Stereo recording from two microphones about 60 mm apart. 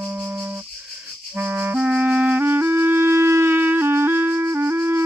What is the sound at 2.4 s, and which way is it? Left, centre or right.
Music, right.